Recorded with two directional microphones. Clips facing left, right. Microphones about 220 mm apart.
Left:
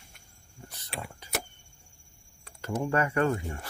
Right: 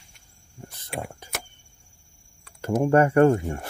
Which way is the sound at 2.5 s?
50° right (ahead or behind).